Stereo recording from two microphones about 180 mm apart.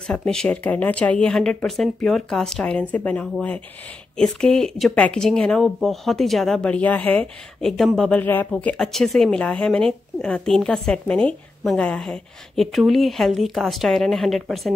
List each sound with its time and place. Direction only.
0.0 s speech: 5° left (ahead or behind)